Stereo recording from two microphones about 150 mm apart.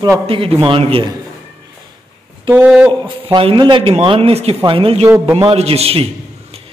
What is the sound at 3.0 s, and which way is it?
A man's voice, 35° right (ahead or behind).